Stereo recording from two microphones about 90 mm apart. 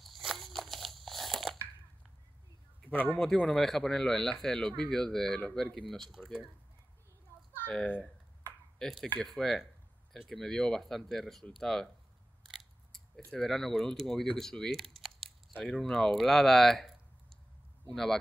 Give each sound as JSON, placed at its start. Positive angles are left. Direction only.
{"t": 0.0, "sound": "biting", "side_deg": 0}
{"t": 2.8, "sound": "speech", "side_deg": 15}
{"t": 7.6, "sound": "speech", "side_deg": 15}
{"t": 8.8, "sound": "speech", "side_deg": 5}
{"t": 12.4, "sound": "scissors", "side_deg": 5}
{"t": 13.4, "sound": "speech", "side_deg": 5}